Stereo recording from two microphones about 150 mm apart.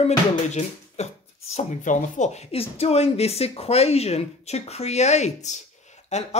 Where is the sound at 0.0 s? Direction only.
50° left (ahead or behind).